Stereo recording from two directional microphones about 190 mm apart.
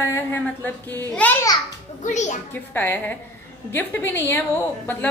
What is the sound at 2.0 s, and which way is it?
Speech, 40° left (ahead or behind).